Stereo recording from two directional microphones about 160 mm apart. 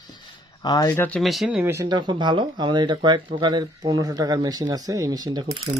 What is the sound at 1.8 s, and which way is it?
Speech, 30° right (ahead or behind).